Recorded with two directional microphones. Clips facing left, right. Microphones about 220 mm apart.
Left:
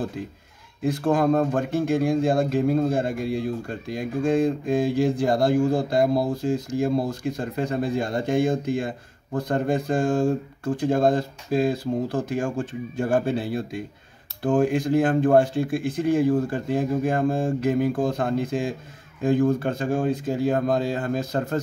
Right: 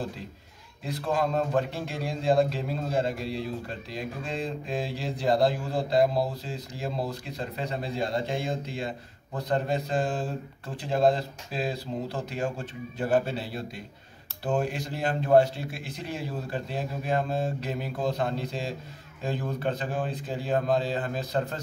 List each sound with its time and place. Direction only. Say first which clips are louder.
0.8 s speech: left 8 dB; 50° left (ahead or behind)